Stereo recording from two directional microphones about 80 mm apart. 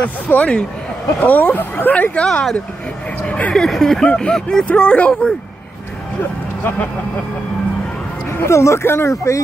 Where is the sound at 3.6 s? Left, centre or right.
Centre.